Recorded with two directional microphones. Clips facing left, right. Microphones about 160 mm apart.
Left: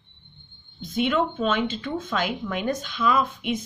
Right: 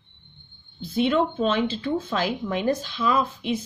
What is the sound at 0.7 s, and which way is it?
A woman's voice, 30° right (ahead or behind).